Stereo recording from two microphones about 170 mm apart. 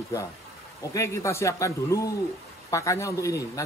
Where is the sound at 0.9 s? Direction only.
15° left (ahead or behind).